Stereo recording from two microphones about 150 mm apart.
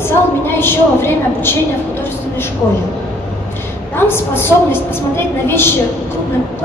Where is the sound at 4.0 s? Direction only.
15° left (ahead or behind).